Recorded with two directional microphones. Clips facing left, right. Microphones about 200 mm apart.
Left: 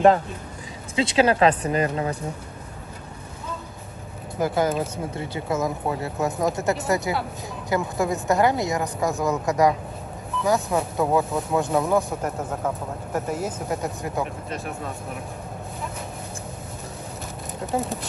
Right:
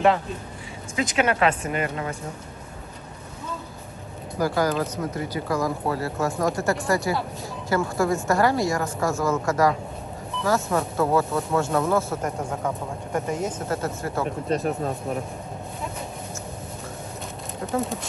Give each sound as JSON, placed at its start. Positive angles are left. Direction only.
{"t": 0.9, "sound": "speech", "side_deg": 30}
{"t": 4.4, "sound": "a woman's voice", "side_deg": 20}
{"t": 12.3, "sound": "speech", "side_deg": 5}
{"t": 14.5, "sound": "speech", "side_deg": -35}